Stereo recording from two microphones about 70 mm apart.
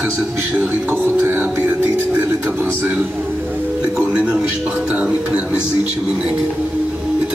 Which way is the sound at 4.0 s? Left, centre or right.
Centre.